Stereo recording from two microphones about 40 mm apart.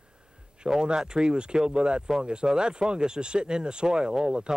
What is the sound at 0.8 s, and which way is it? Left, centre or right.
Speech, right.